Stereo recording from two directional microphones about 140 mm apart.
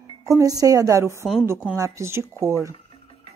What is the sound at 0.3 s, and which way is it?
A woman's voice, 25° right (ahead or behind).